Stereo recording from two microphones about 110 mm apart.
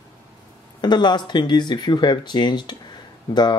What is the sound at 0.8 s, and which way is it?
Speech, 45° left (ahead or behind).